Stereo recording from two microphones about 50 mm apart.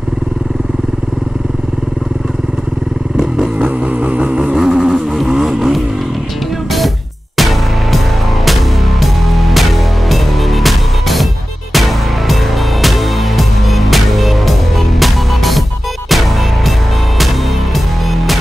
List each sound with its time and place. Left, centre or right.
3.5 s vehicle: right
4.6 s vehicle: centre
7.3 s music: centre
9.0 s music: centre
17.7 s music: centre